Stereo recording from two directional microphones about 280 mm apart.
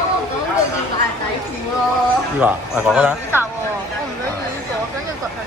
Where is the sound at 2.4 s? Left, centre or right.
Centre.